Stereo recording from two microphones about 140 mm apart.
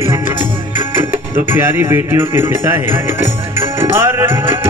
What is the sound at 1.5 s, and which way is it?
Music, 15° right (ahead or behind).